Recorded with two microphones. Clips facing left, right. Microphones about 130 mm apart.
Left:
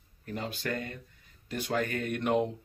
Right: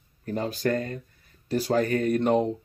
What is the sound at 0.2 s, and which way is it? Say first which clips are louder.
Speech: right 9 dB; 40° right (ahead or behind).